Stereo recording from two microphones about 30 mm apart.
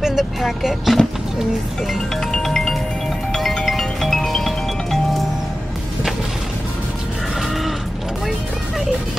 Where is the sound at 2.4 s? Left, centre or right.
Centre.